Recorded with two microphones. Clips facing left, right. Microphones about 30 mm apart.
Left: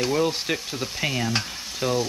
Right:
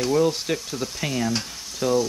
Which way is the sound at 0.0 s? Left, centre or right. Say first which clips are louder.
Right 2 dB; centre.